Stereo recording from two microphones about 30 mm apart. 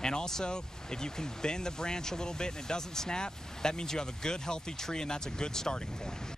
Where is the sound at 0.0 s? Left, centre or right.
Left.